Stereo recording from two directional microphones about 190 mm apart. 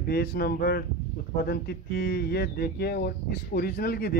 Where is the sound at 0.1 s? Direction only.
55° left (ahead or behind).